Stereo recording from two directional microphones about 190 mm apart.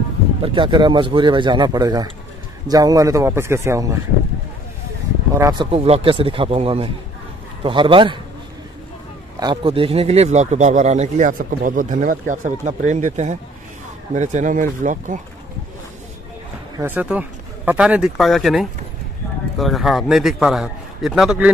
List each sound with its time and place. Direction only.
0.4 s speech: 25° right (ahead or behind)
5.4 s speech: 25° right (ahead or behind)
9.4 s speech: 25° right (ahead or behind); by 15.1 s 40° right (ahead or behind)
16.7 s a man's voice: 10° right (ahead or behind)